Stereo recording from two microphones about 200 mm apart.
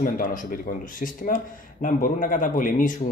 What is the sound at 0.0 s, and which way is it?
Speech, 45° left (ahead or behind).